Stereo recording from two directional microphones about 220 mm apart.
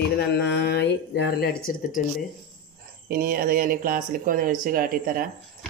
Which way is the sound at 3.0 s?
40° right (ahead or behind).